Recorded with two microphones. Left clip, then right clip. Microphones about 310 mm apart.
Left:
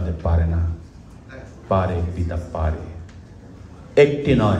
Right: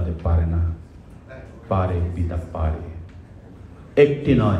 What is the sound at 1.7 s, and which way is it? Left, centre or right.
Speech, left.